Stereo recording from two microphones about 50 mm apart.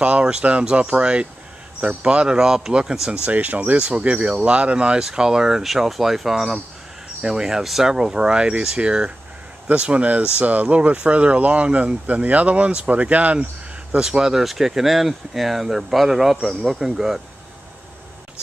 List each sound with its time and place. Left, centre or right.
0.0 s speech: right
3.3 s speech: right
3.7 s speech: right
13.9 s speech: centre